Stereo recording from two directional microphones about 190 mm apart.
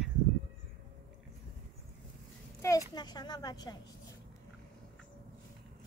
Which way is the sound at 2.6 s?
15° left (ahead or behind).